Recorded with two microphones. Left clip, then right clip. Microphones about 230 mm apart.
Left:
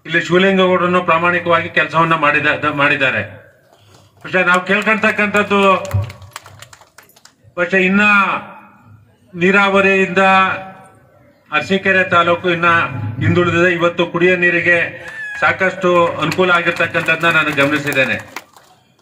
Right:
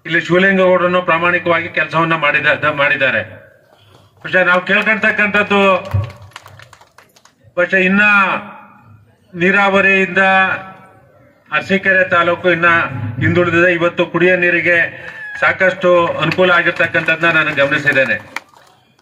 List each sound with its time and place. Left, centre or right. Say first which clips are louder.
0.0 s a man's voice: right 1 dB; right
7.5 s a man's voice: right 2 dB; right
9.4 s a man's voice: even; right